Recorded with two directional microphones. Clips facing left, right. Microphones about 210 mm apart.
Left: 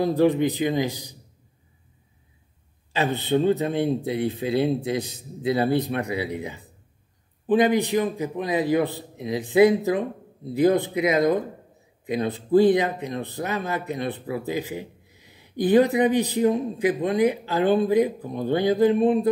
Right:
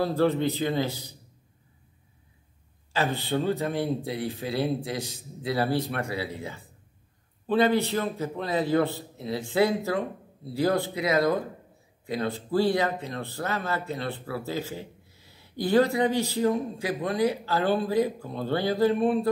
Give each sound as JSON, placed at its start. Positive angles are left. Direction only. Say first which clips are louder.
{"t": 0.0, "sound": "speech", "louder": "left 4 dB", "side_deg": 15}
{"t": 2.9, "sound": "speech", "louder": "left 4 dB", "side_deg": 20}